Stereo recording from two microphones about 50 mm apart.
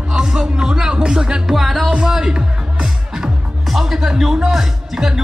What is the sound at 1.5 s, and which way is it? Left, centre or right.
Music, centre.